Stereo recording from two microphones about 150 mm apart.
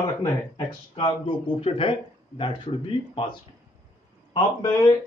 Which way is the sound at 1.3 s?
35° left (ahead or behind).